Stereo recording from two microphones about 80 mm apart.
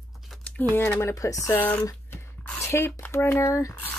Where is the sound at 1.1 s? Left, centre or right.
Left.